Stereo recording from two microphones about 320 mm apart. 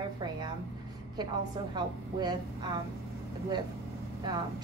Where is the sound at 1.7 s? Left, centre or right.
Centre.